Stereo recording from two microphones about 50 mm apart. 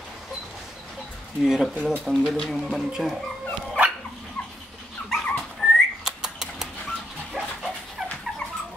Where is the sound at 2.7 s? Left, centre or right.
Centre.